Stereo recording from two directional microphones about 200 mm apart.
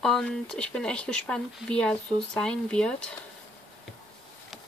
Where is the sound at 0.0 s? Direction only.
5° left (ahead or behind).